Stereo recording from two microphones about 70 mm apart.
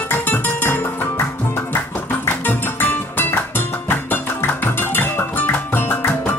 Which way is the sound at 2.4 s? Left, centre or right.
Left.